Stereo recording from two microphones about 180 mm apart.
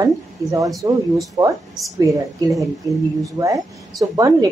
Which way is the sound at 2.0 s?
20° right (ahead or behind).